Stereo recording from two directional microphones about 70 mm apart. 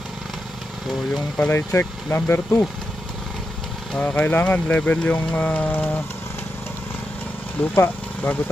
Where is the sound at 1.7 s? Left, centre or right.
Left.